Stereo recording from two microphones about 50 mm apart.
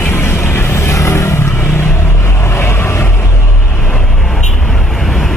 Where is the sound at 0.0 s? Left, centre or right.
Left.